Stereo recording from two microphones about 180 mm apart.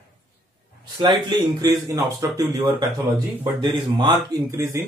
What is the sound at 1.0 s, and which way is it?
Speech, 25° right (ahead or behind).